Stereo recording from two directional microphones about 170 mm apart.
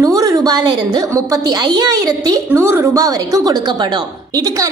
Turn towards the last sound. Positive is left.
turn(degrees=-20)  # may be behind; listen again after turning